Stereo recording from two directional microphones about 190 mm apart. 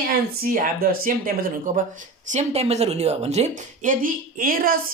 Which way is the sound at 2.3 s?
35° right (ahead or behind).